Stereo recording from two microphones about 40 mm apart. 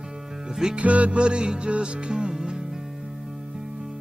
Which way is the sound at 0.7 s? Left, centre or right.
Right.